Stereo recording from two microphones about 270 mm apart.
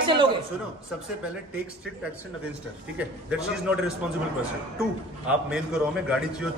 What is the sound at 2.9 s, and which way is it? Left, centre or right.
Speech, centre.